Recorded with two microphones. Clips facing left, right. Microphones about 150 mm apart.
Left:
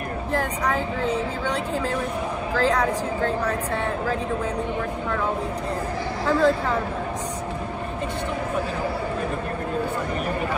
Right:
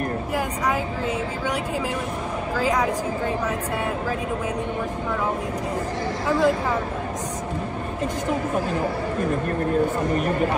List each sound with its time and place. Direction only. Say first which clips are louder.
0.3 s speech: left 3 dB; 10° right (ahead or behind)
6.2 s speech: left 1 dB; 10° right (ahead or behind)